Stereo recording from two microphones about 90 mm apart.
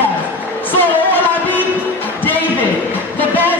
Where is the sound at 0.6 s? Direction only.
20° left (ahead or behind).